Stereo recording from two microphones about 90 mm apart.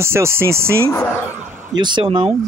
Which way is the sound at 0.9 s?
25° left (ahead or behind).